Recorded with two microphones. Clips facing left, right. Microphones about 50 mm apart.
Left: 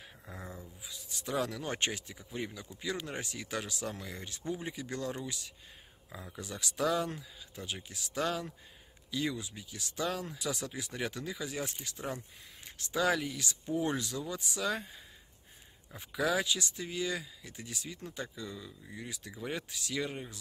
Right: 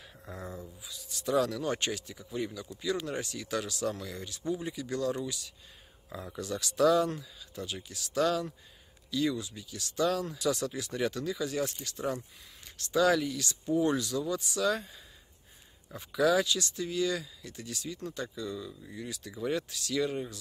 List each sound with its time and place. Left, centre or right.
0.8 s speech: left
16.0 s speech: left
19.0 s speech: left